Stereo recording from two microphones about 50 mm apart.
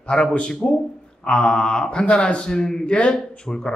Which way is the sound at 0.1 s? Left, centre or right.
Centre.